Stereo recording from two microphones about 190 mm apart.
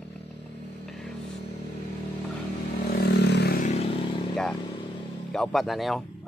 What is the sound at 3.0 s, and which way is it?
Vehicle, 60° left (ahead or behind).